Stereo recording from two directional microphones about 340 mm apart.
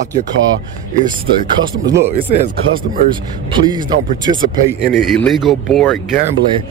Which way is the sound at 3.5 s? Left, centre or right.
Centre.